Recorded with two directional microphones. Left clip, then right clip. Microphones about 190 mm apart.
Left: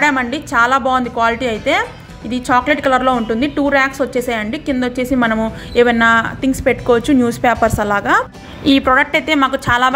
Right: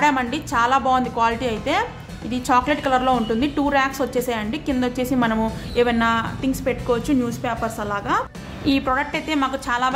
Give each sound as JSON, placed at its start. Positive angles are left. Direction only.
{"t": 0.0, "sound": "a woman's voice", "side_deg": 15}